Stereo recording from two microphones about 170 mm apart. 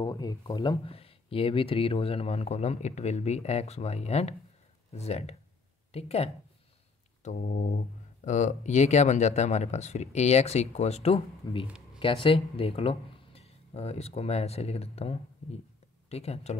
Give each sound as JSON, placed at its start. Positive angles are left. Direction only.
{"t": 0.0, "sound": "speech", "side_deg": 20}
{"t": 11.6, "sound": "a sound", "side_deg": -5}
{"t": 12.0, "sound": "speech", "side_deg": 30}